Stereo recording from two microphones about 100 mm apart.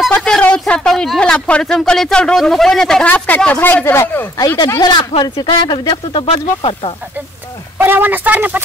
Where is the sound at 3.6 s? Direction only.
20° left (ahead or behind).